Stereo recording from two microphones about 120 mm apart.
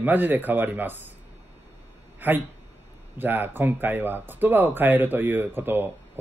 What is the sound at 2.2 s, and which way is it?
Speech, 15° right (ahead or behind).